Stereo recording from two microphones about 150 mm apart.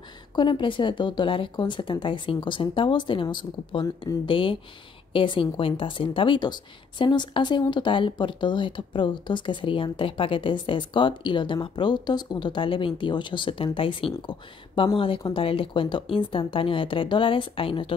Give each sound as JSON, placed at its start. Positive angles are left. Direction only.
{"t": 0.4, "sound": "speech", "side_deg": 35}